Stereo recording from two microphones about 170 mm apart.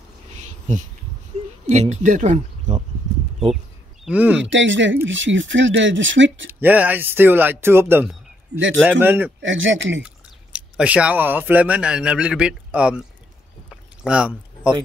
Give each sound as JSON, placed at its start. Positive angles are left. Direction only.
{"t": 0.4, "sound": "a sound", "side_deg": -45}
{"t": 1.7, "sound": "speech", "side_deg": -40}
{"t": 4.0, "sound": "speech", "side_deg": -10}
{"t": 4.4, "sound": "speech", "side_deg": -90}
{"t": 6.6, "sound": "speech", "side_deg": -10}
{"t": 9.4, "sound": "speech", "side_deg": -90}
{"t": 10.0, "sound": "speech", "side_deg": -5}
{"t": 14.0, "sound": "speech", "side_deg": -5}